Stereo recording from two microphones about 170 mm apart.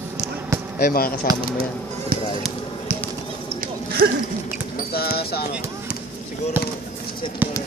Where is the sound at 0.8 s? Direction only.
60° left (ahead or behind).